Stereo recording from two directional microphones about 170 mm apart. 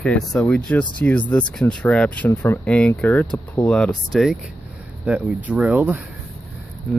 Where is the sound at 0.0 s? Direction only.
5° left (ahead or behind).